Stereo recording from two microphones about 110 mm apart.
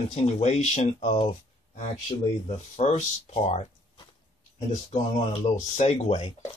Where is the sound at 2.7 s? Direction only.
85° left.